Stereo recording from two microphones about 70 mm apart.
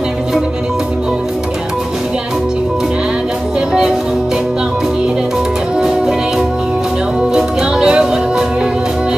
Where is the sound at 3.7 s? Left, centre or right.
Centre.